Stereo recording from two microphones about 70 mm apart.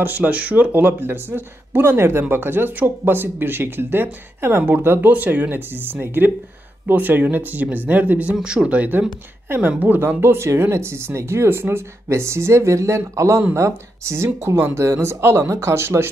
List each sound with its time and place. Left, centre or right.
0.0 s speech: right